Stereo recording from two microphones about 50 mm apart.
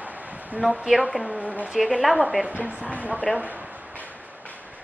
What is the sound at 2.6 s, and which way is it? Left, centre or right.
Speech, right.